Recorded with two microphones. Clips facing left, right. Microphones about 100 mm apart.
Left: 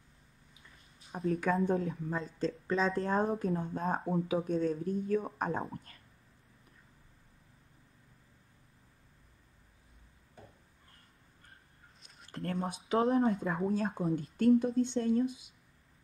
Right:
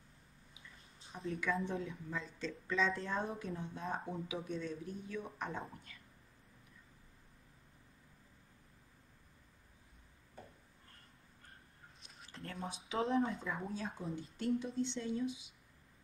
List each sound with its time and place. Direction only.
1.3 s speech: 45° left (ahead or behind)
12.3 s a sound: 55° left (ahead or behind)
12.6 s speech: 55° left (ahead or behind)